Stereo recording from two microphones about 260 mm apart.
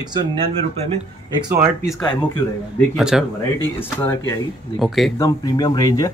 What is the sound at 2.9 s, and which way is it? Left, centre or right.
Speech, centre.